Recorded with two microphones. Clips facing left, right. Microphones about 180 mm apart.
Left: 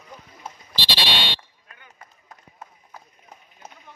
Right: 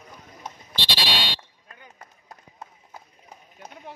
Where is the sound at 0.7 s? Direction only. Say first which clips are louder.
Left 1 dB; 45° right (ahead or behind).